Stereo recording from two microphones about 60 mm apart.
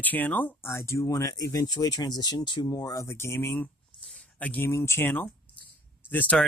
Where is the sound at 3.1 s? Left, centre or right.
Left.